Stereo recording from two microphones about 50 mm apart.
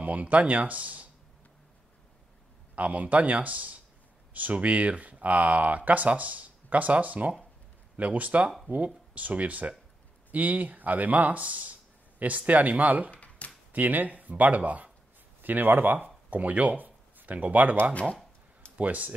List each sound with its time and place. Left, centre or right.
0.0 s speech: right
2.7 s speech: right
13.1 s a sound: left
13.7 s speech: right
18.8 s speech: right